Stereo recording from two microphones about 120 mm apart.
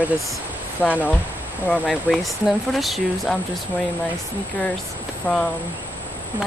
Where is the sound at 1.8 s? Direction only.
Centre (ahead or behind).